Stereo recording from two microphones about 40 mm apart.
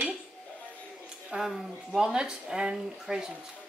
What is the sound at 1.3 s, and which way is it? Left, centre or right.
Speech, right.